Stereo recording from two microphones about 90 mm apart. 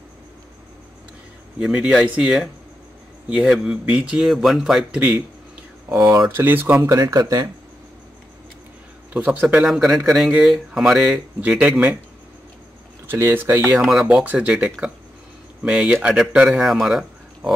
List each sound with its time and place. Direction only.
1.6 s speech: 10° right (ahead or behind)
5.9 s speech: 35° right (ahead or behind)
6.3 s speech: 25° right (ahead or behind)
6.9 s speech: 40° right (ahead or behind)
9.1 s speech: 15° right (ahead or behind)
9.7 s speech: 5° right (ahead or behind)
13.0 s speech: 25° right (ahead or behind)
13.7 s speech: 5° right (ahead or behind)